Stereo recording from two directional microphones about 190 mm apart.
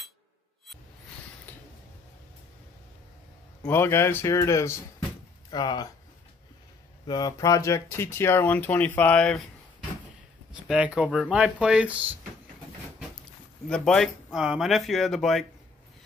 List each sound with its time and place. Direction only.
1.5 s a sound: 10° left (ahead or behind)
3.6 s speech: 15° left (ahead or behind)
7.1 s speech: 20° left (ahead or behind); by 9.5 s 5° left (ahead or behind)
10.5 s speech: 5° right (ahead or behind)
13.7 s speech: 5° left (ahead or behind)